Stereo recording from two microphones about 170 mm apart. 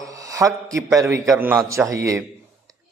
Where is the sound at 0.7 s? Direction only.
20° right (ahead or behind).